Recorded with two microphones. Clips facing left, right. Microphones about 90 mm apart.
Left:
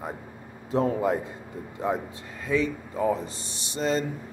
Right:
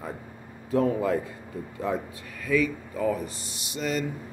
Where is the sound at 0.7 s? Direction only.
25° left (ahead or behind).